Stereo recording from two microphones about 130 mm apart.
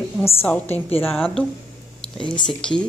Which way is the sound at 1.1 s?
Centre (ahead or behind).